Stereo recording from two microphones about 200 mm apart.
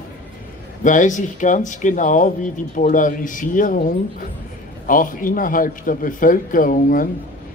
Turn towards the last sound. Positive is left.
turn(degrees=45)  # may be behind; listen again after turning